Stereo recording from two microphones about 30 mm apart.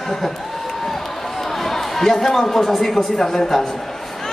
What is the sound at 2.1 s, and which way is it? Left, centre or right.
A man's voice, centre.